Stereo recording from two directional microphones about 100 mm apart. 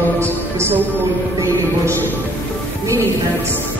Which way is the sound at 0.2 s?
25° right (ahead or behind).